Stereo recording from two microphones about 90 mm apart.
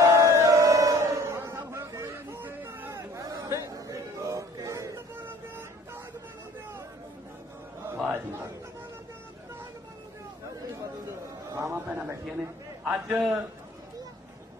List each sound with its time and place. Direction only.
0.0 s crowd: 35° right (ahead or behind)
1.6 s a sound: 25° right (ahead or behind)
1.9 s hubbub: 30° right (ahead or behind)
2.9 s chatter: 35° right (ahead or behind)
8.1 s chatter: 25° right (ahead or behind)
11.1 s a sound: 30° right (ahead or behind)
12.8 s a man's voice: 15° right (ahead or behind)